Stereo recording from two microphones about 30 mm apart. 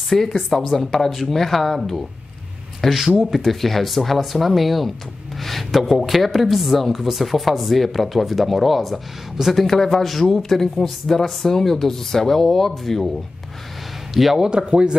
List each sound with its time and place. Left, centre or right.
0.1 s speech: centre
2.8 s speech: centre
9.8 s speech: centre
14.1 s speech: centre
14.4 s speech: right